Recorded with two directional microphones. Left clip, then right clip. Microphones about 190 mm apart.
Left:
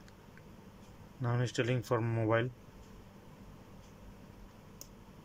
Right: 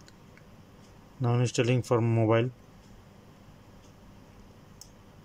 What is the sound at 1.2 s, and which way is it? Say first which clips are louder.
Speech: right 7 dB; 15° right (ahead or behind).